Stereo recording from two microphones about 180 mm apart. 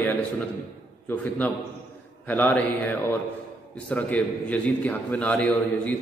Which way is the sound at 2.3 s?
10° left (ahead or behind).